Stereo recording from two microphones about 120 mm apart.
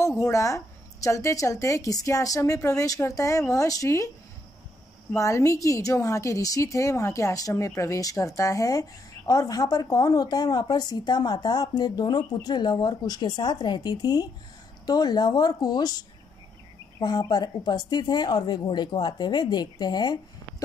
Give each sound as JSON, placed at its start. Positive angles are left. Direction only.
{"t": 0.2, "sound": "a woman's voice", "side_deg": 25}
{"t": 5.1, "sound": "a woman's voice", "side_deg": 25}